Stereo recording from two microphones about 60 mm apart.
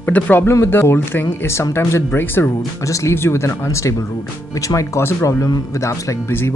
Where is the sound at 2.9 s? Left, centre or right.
Left.